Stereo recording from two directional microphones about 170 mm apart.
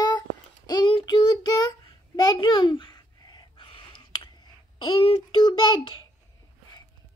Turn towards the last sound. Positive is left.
turn(degrees=25)  # may be behind; listen again after turning